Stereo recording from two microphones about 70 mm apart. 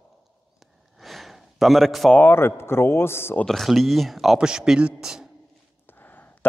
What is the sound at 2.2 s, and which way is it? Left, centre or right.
A man's voice, left.